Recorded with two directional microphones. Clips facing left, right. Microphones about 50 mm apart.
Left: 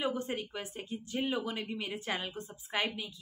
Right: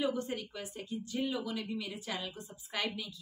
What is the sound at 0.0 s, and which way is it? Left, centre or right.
Speech, left.